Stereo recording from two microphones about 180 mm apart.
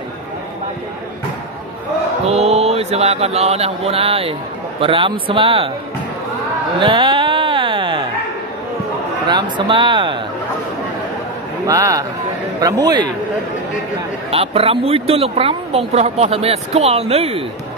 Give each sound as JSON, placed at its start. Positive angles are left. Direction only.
{"t": 2.2, "sound": "mantra", "side_deg": -35}
{"t": 5.3, "sound": "speech", "side_deg": -30}
{"t": 6.8, "sound": "music", "side_deg": -25}
{"t": 9.3, "sound": "speech", "side_deg": -25}
{"t": 11.6, "sound": "speech", "side_deg": -20}
{"t": 14.3, "sound": "speech", "side_deg": -30}